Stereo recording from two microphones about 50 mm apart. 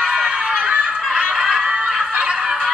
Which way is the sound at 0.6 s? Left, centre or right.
Right.